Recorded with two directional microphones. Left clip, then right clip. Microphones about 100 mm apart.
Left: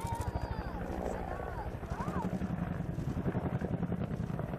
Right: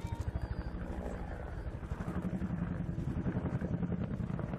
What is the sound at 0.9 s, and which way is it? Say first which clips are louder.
Wild animals: left 6 dB; 15° left (ahead or behind).